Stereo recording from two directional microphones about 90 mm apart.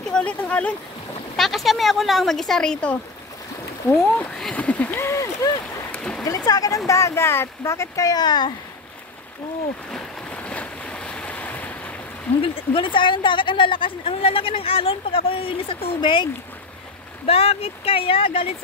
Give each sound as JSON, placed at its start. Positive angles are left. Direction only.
{"t": 0.0, "sound": "speech", "side_deg": 10}
{"t": 1.3, "sound": "speech", "side_deg": 0}
{"t": 4.1, "sound": "speech", "side_deg": 15}
{"t": 5.0, "sound": "boat", "side_deg": 35}
{"t": 5.9, "sound": "a sound", "side_deg": 10}
{"t": 6.2, "sound": "a sound", "side_deg": 45}
{"t": 6.9, "sound": "speech", "side_deg": 35}
{"t": 9.8, "sound": "waves", "side_deg": 10}
{"t": 12.4, "sound": "speech", "side_deg": 75}
{"t": 17.3, "sound": "speech", "side_deg": 90}